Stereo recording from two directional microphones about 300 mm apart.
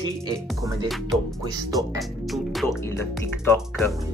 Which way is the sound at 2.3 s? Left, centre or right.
Centre.